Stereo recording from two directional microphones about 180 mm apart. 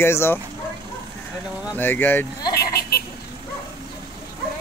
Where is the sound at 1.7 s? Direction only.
10° left (ahead or behind).